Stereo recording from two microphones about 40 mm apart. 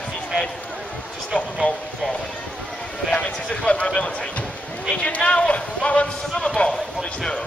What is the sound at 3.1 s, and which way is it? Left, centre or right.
Speech, left.